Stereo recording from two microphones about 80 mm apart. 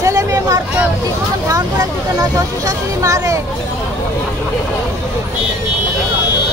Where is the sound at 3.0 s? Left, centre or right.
Right.